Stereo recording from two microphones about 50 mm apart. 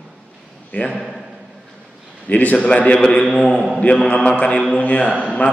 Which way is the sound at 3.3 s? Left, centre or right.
Centre.